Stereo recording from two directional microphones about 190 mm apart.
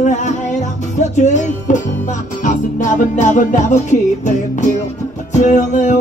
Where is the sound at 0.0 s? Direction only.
40° left (ahead or behind).